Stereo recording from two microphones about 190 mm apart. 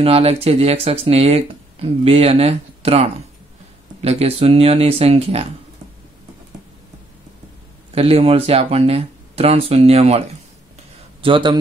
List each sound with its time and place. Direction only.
0.0 s speech: 30° right (ahead or behind)
7.9 s a man's voice: 30° right (ahead or behind)